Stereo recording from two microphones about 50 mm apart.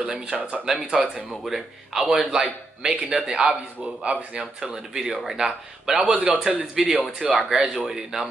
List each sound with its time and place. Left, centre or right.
0.0 s speech: right
4.6 s speech: centre
6.7 s speech: centre